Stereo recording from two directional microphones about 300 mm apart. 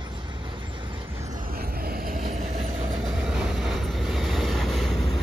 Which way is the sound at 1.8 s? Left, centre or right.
Right.